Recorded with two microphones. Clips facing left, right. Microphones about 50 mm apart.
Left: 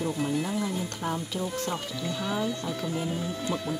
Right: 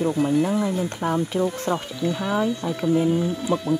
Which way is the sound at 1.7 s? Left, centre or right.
Centre.